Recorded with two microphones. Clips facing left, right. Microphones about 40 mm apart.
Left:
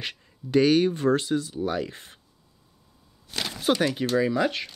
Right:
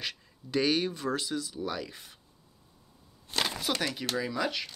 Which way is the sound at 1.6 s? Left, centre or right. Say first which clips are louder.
Left 7 dB; left.